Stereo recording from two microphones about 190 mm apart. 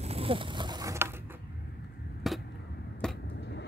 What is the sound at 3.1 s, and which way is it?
Vehicle, 60° left (ahead or behind).